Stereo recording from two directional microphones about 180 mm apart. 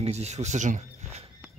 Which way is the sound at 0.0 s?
35° right (ahead or behind).